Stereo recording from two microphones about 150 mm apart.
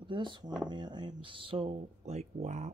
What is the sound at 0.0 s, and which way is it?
Speech, 30° right (ahead or behind).